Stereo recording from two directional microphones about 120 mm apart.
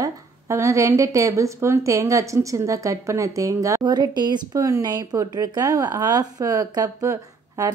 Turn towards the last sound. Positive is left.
turn(degrees=-25)  # may be behind; listen again after turning